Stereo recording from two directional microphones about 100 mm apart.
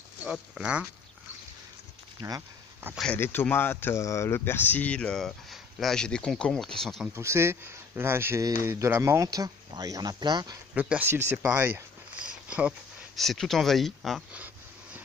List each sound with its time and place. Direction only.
0.2 s speech: 10° right (ahead or behind)
2.2 s speech: 45° right (ahead or behind)
3.2 s speech: 20° left (ahead or behind); by 7.1 s 5° left (ahead or behind)
7.2 s speech: 25° right (ahead or behind); by 10.6 s 45° right (ahead or behind)
10.8 s speech: 15° right (ahead or behind)
12.2 s a sound: 10° right (ahead or behind)
13.1 s speech: centre (ahead or behind)
14.3 s a sound: 15° right (ahead or behind)